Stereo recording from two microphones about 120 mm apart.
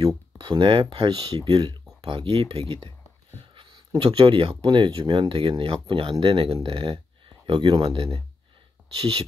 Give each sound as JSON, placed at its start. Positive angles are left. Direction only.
{"t": 0.0, "sound": "speech", "side_deg": -45}
{"t": 3.5, "sound": "a sound", "side_deg": -45}
{"t": 4.0, "sound": "speech", "side_deg": -45}